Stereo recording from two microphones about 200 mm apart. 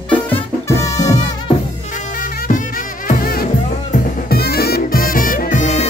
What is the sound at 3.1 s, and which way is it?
Music, 45° left (ahead or behind).